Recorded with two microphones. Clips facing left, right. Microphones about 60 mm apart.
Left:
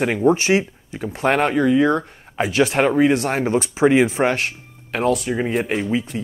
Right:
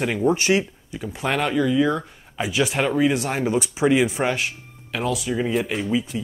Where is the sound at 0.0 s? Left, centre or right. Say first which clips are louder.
Left 4 dB; left.